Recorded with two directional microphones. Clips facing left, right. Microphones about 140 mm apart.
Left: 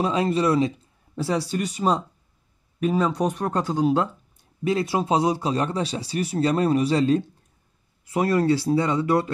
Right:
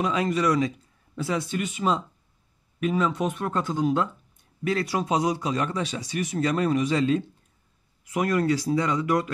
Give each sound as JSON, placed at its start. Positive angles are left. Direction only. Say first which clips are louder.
{"t": 0.0, "sound": "a man's voice", "louder": "left 2 dB", "side_deg": 30}